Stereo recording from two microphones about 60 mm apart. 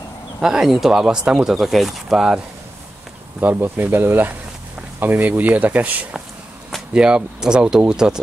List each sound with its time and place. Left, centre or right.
0.4 s speech: centre
3.3 s speech: right; by 8.2 s centre